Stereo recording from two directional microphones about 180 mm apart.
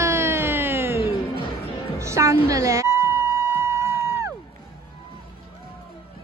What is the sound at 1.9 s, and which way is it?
Music, 15° right (ahead or behind).